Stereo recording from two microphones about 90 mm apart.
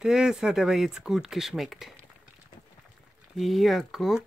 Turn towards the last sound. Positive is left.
turn(degrees=-5)  # may be behind; listen again after turning